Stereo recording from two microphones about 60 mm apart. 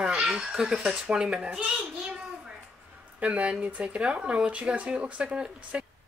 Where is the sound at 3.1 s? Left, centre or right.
Right.